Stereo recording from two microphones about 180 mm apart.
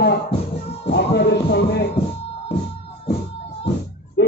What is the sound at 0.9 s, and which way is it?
Music, 70° left (ahead or behind).